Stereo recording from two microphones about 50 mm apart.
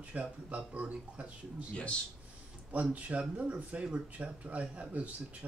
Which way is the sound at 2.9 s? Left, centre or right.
Right.